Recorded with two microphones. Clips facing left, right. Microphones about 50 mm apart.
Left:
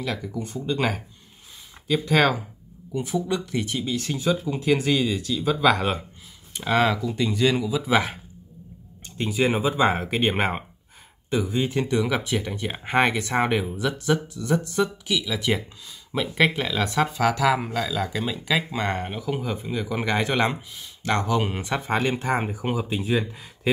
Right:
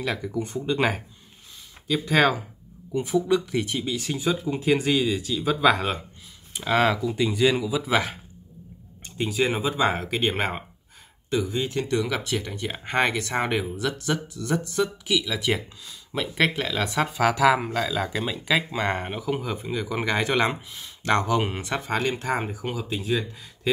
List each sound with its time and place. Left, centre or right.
0.4 s speech: centre
9.3 s speech: centre
16.1 s speech: centre
16.7 s speech: centre
21.0 s speech: centre
21.5 s speech: centre